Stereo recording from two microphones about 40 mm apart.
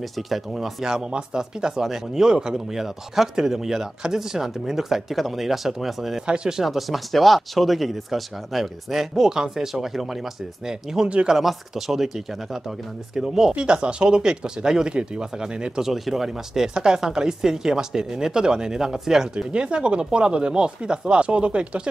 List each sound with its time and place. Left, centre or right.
0.3 s speech: centre
6.2 s speech: right
6.5 s speech: centre
9.1 s speech: centre
11.0 s speech: centre
11.4 s speech: centre
13.1 s speech: centre
13.6 s speech: right
15.8 s speech: centre
19.3 s speech: right